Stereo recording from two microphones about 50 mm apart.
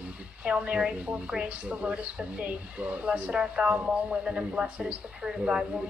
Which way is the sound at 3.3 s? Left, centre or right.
Centre.